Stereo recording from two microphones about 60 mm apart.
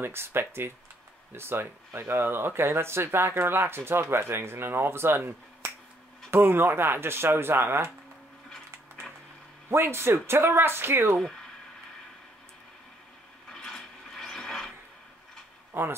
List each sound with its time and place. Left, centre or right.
0.0 s speech: right
9.7 s speech: right
13.5 s mechanisms: centre
15.7 s speech: right